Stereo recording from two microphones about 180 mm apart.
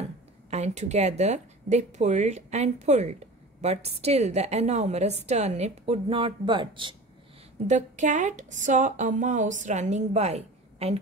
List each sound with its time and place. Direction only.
0.5 s a woman's voice: 40° right (ahead or behind)
7.6 s speech: 40° right (ahead or behind)